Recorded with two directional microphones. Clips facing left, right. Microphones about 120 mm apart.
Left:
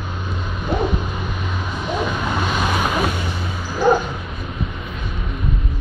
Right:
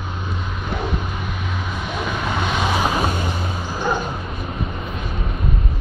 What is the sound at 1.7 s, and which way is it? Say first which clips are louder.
Vehicle: left 4 dB; 5° left (ahead or behind).